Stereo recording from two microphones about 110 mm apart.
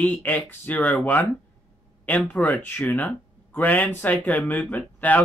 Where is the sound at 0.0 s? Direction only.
15° left (ahead or behind).